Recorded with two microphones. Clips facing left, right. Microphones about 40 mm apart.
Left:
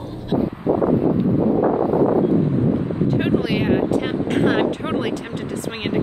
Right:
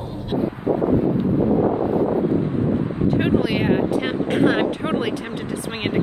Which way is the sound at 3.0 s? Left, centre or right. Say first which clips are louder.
Right 1 dB; centre.